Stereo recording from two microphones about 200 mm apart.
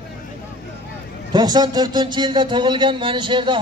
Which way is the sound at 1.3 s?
20° right (ahead or behind).